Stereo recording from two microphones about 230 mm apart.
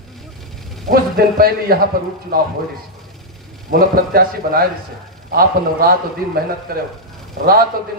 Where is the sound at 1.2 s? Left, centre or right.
Right.